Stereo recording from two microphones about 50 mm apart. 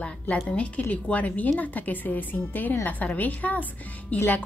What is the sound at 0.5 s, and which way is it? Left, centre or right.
A woman's voice, left.